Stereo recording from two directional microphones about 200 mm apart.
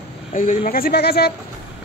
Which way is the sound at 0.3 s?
40° left (ahead or behind).